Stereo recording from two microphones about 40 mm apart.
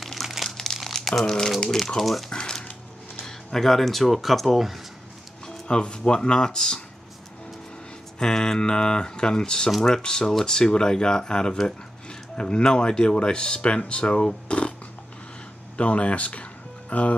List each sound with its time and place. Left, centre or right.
0.0 s crumpling: centre
1.2 s speech: centre
2.0 s speech: centre
2.2 s a sound: centre
3.5 s speech: centre
5.7 s speech: left
8.2 s speech: centre
15.8 s speech: left